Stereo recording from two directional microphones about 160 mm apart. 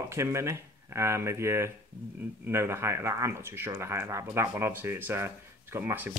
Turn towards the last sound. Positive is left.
turn(degrees=-15)  # may be behind; listen again after turning